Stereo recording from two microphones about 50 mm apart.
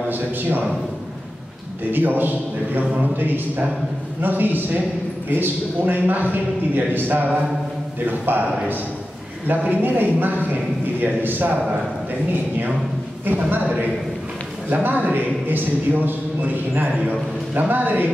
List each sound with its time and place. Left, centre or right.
0.1 s a man's voice: right
1.9 s a man's voice: right
14.7 s a man's voice: right